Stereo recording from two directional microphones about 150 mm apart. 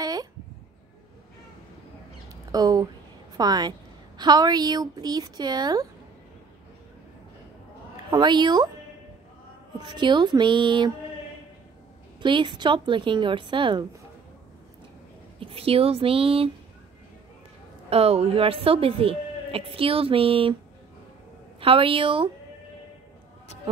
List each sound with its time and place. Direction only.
0.0 s a sound: 25° right (ahead or behind)
2.5 s a woman's voice: 25° right (ahead or behind)
8.1 s a woman's voice: 30° right (ahead or behind)
9.8 s a woman's voice: 30° right (ahead or behind)
12.2 s a woman's voice: 30° right (ahead or behind)
15.3 s a woman's voice: 40° right (ahead or behind)
17.8 s a woman's voice: 45° right (ahead or behind)
21.5 s a woman's voice: 35° right (ahead or behind)